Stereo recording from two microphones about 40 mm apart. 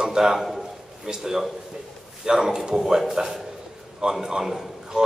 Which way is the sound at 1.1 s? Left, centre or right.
Centre.